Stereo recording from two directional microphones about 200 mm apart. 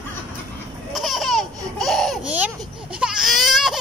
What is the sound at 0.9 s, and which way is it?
Laughter, centre (ahead or behind).